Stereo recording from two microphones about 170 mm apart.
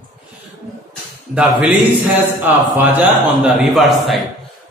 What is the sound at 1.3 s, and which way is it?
Speech, 5° right (ahead or behind).